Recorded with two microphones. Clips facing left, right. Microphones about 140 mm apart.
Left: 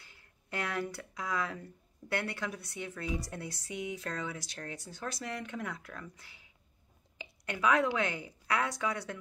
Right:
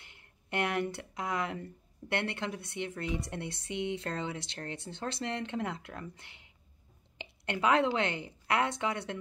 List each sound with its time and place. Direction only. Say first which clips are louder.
0.0 s a woman's voice: right 1 dB; 20° right (ahead or behind)